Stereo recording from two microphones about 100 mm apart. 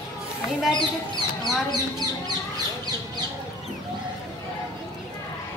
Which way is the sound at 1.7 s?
45° right (ahead or behind).